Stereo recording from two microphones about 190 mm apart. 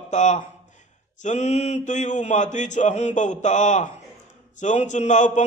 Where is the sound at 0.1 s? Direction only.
40° left (ahead or behind).